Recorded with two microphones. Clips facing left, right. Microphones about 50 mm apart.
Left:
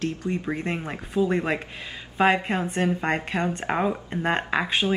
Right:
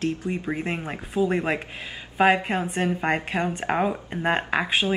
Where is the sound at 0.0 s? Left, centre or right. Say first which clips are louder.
Right 1 dB; centre.